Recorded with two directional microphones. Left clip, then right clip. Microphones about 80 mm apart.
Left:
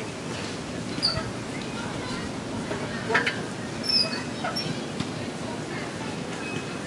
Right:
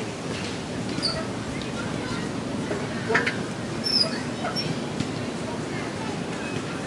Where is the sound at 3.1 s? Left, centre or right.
Left.